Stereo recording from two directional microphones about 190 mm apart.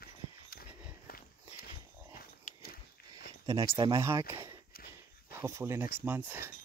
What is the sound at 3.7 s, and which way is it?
Speech, 20° right (ahead or behind).